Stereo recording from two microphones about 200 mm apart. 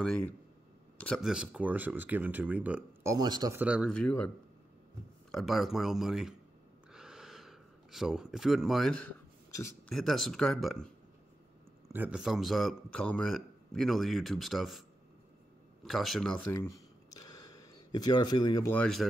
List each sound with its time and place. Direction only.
0.0 s speech: 5° left (ahead or behind); by 3.5 s 20° right (ahead or behind)
3.5 s speech: 5° right (ahead or behind)
3.9 s a man's voice: 5° left (ahead or behind)
5.3 s speech: centre (ahead or behind)
6.9 s gasp: 5° right (ahead or behind)
9.8 s speech: centre (ahead or behind)
11.9 s speech: 5° right (ahead or behind)
16.5 s a sound: 15° left (ahead or behind)
18.8 s speech: 5° left (ahead or behind)